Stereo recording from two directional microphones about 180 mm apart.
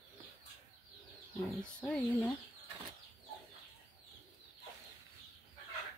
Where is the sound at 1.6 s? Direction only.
5° left (ahead or behind).